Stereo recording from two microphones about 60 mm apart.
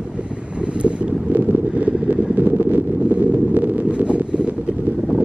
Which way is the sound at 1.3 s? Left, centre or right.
Right.